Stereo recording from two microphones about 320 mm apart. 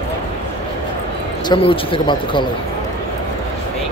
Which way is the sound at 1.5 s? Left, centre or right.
Centre.